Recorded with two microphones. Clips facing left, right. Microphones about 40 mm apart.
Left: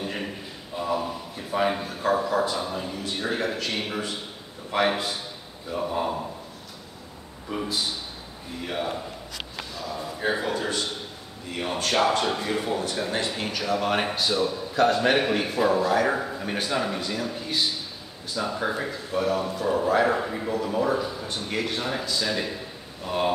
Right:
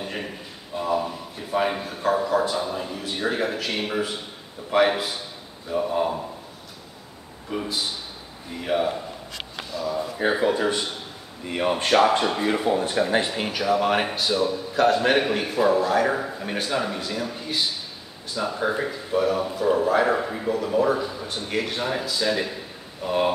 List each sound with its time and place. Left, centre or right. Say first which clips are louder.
0.0 s a sound: even; centre
0.7 s speech: right 2 dB; centre
7.5 s speech: right 1 dB; centre
10.3 s speech: right 7 dB; centre